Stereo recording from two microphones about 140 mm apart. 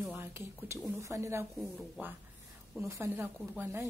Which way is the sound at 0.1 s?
15° right (ahead or behind).